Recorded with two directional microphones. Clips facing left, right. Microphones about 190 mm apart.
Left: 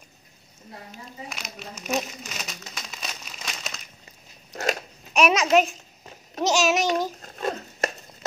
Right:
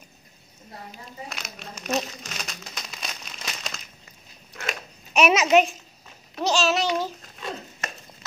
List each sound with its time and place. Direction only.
1.3 s crumpling: centre (ahead or behind)
4.5 s biting: 40° left (ahead or behind)
5.1 s a child's voice: 5° right (ahead or behind)
6.5 s babbling: 10° left (ahead or behind)
7.2 s a sound: 45° left (ahead or behind)